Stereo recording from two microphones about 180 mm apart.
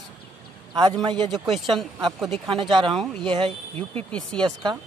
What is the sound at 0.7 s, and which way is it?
Speech, 20° right (ahead or behind).